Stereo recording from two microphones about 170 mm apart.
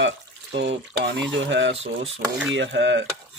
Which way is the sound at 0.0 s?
90° right.